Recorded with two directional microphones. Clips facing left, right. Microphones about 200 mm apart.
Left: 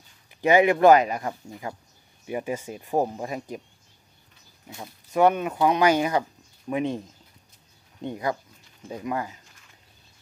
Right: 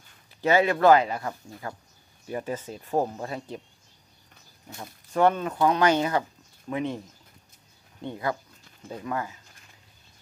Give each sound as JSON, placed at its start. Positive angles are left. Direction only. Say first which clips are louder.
{"t": 0.4, "sound": "speech", "louder": "left 3 dB", "side_deg": 15}
{"t": 4.6, "sound": "speech", "louder": "left 1 dB", "side_deg": 10}
{"t": 8.0, "sound": "speech", "louder": "left 2 dB", "side_deg": 15}